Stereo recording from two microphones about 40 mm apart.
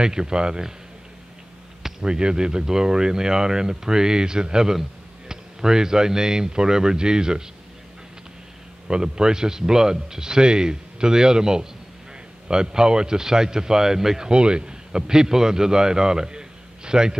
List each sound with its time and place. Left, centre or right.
0.0 s a man's voice: centre
1.8 s basketball bounce: centre
2.0 s speech: right
8.8 s speech: right